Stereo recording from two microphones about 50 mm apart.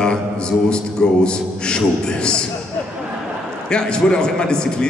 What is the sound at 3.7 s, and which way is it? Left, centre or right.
Speech, centre.